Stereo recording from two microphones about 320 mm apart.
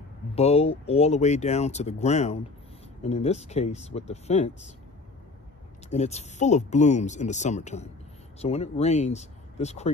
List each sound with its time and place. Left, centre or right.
0.3 s speech: centre
5.9 s speech: centre